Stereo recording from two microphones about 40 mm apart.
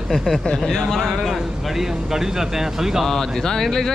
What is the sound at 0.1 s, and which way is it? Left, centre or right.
Speech, centre.